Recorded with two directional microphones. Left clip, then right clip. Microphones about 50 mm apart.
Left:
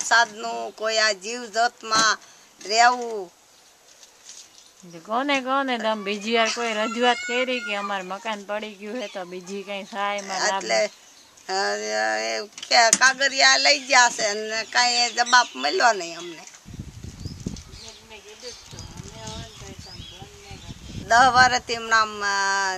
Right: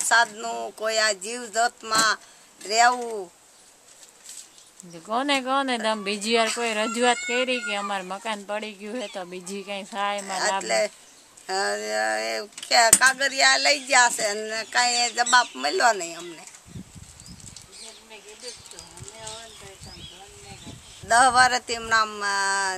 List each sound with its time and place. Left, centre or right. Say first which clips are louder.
0.0 s speech: left 1 dB; centre
4.9 s speech: left 1 dB; right
8.9 s speech: left 1 dB; right
9.3 s speech: left 1 dB; right
10.2 s speech: left 1 dB; centre
19.1 s clip-clop: left 1 dB; right
21.1 s speech: left 2 dB; centre